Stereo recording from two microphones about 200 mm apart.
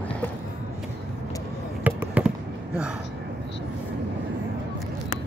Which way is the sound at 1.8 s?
5° right (ahead or behind).